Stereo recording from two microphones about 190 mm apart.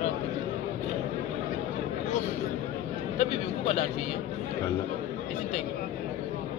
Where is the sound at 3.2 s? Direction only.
45° left (ahead or behind).